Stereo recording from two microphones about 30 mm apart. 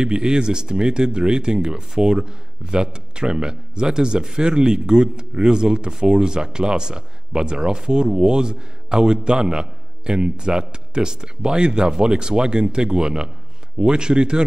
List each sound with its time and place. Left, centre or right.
0.0 s speech: right